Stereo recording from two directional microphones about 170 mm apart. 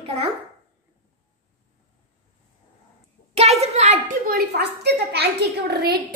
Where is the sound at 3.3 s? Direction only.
40° right (ahead or behind).